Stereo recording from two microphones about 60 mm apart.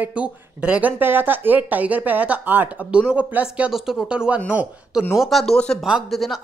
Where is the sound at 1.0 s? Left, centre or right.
Right.